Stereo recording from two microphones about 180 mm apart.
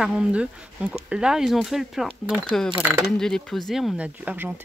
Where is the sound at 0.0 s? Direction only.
5° right (ahead or behind).